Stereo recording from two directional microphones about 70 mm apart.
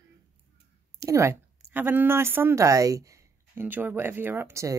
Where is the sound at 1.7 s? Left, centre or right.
Right.